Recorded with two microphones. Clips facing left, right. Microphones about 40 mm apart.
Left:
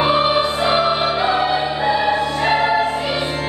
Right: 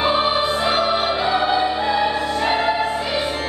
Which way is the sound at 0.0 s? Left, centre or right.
Left.